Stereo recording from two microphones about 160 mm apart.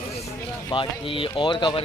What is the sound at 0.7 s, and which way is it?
Speech, 30° left (ahead or behind).